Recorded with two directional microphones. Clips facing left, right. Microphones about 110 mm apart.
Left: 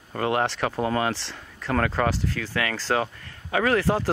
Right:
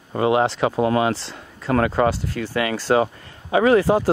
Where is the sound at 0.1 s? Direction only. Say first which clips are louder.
Right 6 dB; 10° right (ahead or behind).